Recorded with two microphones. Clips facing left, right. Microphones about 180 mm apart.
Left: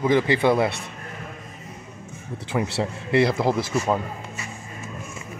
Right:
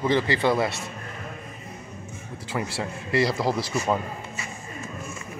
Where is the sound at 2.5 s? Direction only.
10° left (ahead or behind).